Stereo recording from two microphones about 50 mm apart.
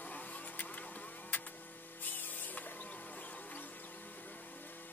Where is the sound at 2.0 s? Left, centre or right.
Left.